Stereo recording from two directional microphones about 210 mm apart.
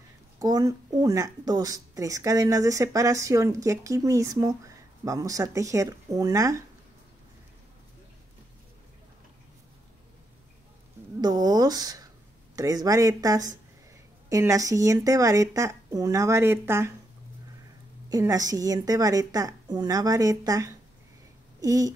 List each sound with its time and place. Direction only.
0.4 s speech: 15° right (ahead or behind)
11.1 s a sound: 20° right (ahead or behind)
12.5 s speech: 15° right (ahead or behind)
18.1 s speech: 15° right (ahead or behind)